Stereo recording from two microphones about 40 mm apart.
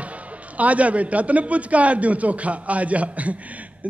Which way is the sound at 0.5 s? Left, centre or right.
Right.